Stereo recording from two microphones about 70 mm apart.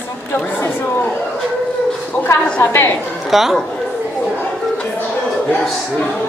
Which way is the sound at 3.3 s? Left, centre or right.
Centre.